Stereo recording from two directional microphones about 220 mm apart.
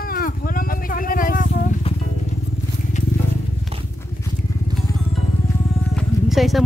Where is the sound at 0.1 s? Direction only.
40° left (ahead or behind).